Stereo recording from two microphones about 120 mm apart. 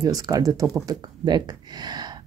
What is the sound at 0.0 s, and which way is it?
Speech, 30° right (ahead or behind).